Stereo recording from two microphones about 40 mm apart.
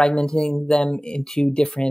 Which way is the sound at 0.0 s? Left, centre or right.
Left.